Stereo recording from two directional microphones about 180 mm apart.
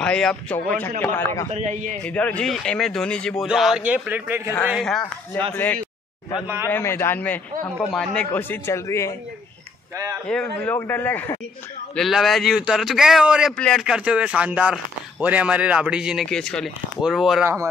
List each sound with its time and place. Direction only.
0.0 s a man's voice: 5° left (ahead or behind)
1.5 s a man's voice: 40° right (ahead or behind)
2.0 s a man's voice: 5° left (ahead or behind); by 4.6 s 10° right (ahead or behind)
4.6 s a man's voice: centre (ahead or behind)
6.4 s a man's voice: 15° right (ahead or behind)
6.7 s a man's voice: 15° left (ahead or behind)
10.2 s a man's voice: 5° left (ahead or behind)
11.9 s a man's voice: centre (ahead or behind)